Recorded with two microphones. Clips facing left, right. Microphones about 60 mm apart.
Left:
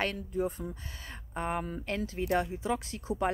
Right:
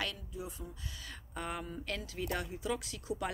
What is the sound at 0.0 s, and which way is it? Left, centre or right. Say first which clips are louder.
Speech: left 9 dB; left.